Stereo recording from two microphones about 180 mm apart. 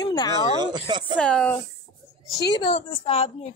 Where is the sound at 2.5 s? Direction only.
25° left (ahead or behind).